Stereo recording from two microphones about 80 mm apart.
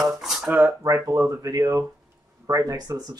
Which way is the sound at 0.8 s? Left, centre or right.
Right.